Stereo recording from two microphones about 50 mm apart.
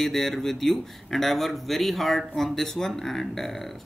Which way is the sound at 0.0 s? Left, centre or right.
Centre.